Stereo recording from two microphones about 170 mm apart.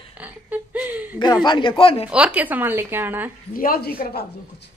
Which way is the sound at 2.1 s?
10° right (ahead or behind).